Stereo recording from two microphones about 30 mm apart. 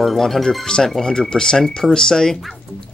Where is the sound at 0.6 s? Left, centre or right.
Left.